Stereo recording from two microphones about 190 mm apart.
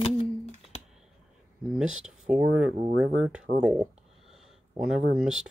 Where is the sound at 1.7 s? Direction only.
5° right (ahead or behind).